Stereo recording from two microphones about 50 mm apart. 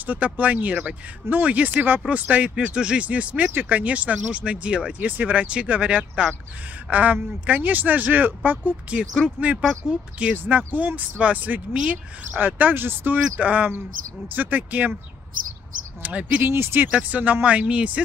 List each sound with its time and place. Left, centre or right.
0.0 s speech: right
5.0 s speech: right
9.4 s speech: right
10.3 s speech: right
16.0 s speech: right
16.4 s speech: right
16.9 s speech: right